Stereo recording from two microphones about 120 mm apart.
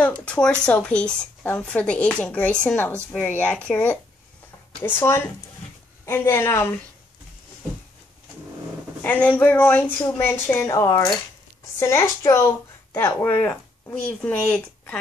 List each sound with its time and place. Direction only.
0.0 s speech: 10° left (ahead or behind)
9.0 s speech: 15° left (ahead or behind)